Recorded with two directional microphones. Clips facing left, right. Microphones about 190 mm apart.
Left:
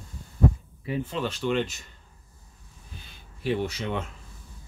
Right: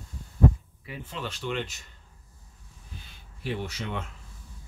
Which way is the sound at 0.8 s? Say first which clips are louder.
Left 8 dB; 30° left (ahead or behind).